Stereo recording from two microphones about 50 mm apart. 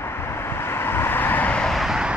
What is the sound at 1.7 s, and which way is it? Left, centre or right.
Vehicle, centre.